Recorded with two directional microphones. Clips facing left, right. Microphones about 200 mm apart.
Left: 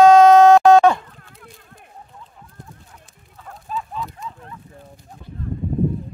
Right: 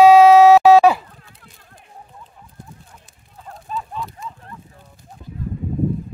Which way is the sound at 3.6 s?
Centre (ahead or behind).